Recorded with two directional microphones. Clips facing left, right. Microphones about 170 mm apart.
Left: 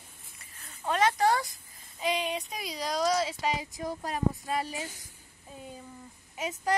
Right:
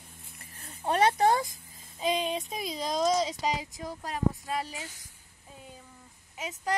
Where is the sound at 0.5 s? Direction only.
35° right (ahead or behind).